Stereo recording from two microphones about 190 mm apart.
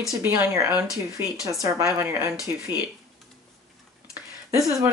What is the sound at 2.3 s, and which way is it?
Speech, 15° left (ahead or behind).